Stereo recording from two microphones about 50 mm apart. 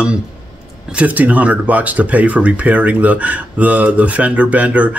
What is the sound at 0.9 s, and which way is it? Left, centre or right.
Speech, right.